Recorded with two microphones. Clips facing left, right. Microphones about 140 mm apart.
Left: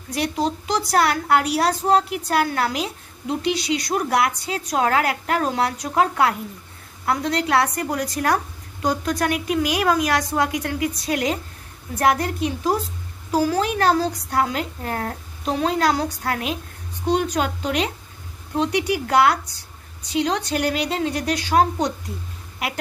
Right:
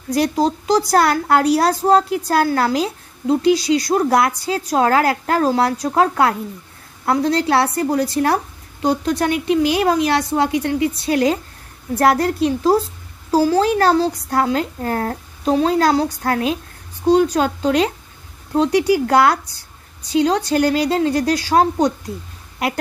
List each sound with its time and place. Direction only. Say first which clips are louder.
0.1 s a woman's voice: right 6 dB; 35° right (ahead or behind)